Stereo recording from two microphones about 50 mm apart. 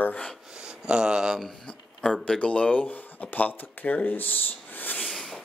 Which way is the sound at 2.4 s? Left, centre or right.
Left.